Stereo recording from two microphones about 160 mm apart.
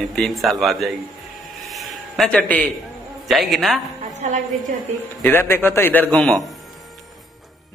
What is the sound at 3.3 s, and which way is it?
Speech, centre (ahead or behind).